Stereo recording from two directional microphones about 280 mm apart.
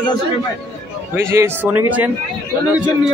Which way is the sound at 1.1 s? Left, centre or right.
Centre.